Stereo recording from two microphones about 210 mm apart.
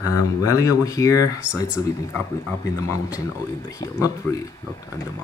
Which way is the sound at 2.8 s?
15° left (ahead or behind).